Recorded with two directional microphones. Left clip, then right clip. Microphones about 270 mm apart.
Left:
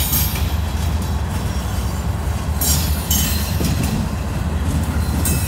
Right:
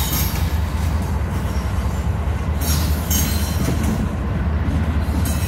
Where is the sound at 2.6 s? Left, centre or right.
Left.